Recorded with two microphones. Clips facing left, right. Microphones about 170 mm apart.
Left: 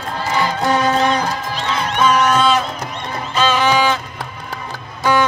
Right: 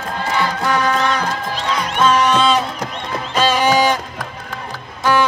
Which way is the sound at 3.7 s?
45° right (ahead or behind).